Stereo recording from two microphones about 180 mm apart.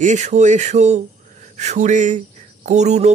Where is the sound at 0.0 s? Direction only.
40° right (ahead or behind).